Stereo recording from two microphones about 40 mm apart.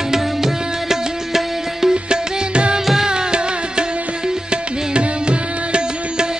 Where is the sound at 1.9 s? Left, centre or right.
Right.